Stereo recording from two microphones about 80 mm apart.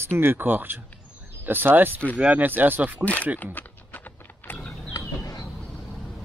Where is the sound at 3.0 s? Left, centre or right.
Centre.